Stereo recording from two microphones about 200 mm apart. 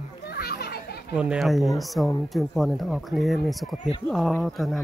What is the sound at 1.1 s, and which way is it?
Speech, 5° right (ahead or behind).